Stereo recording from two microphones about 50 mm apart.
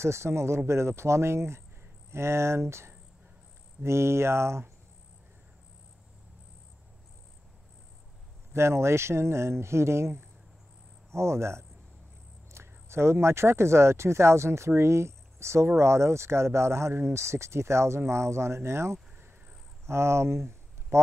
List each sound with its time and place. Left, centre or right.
0.0 s speech: right
8.5 s speech: right